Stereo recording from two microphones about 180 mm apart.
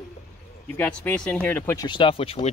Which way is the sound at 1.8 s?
25° left (ahead or behind).